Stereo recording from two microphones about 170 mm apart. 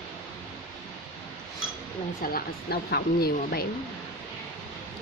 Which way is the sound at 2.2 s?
65° left (ahead or behind).